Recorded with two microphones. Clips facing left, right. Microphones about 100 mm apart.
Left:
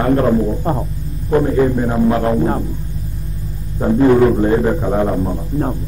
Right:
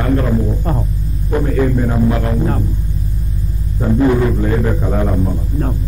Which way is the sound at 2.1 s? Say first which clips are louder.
Left 3 dB; 30° left (ahead or behind).